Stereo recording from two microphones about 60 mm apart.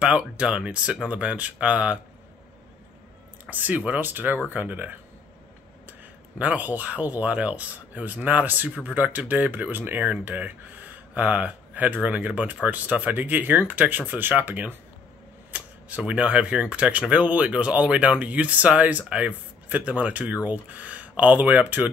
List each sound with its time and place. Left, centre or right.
0.4 s speech: centre
3.4 s speech: right